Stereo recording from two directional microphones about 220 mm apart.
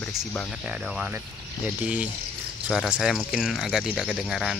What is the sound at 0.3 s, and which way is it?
Speech, 5° left (ahead or behind).